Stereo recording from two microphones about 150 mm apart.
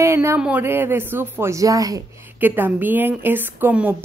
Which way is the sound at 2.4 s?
15° right (ahead or behind).